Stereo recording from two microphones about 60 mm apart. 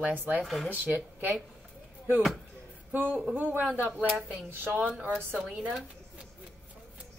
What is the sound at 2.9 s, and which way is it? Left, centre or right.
A man's voice, right.